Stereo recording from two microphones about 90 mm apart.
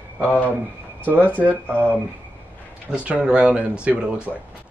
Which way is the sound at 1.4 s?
20° right (ahead or behind).